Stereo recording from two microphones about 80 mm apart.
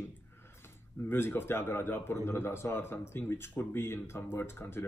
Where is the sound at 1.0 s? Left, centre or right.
Left.